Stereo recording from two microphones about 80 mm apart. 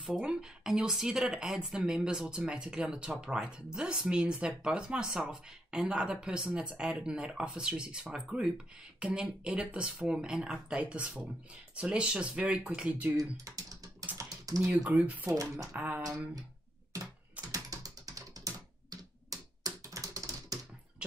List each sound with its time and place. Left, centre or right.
0.0 s speech: centre
13.2 s speech: right
14.1 s typing: right
14.6 s speech: centre
15.3 s speech: right
16.9 s typing: right